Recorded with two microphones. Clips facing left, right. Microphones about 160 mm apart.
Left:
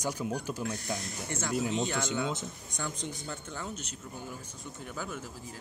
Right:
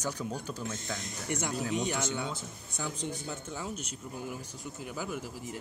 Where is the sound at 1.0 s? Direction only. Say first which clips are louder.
Right 2 dB; 20° right (ahead or behind).